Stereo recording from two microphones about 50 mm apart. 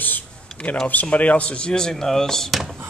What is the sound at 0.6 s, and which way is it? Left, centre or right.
Speech, left.